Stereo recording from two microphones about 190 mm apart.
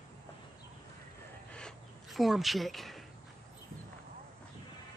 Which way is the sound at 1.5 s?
Centre (ahead or behind).